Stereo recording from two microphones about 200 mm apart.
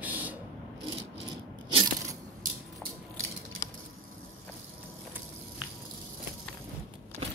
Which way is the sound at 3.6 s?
15° left (ahead or behind).